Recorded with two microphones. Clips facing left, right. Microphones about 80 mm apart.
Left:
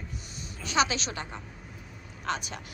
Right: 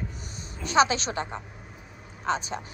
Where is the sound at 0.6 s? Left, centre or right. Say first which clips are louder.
Right 5 dB; right.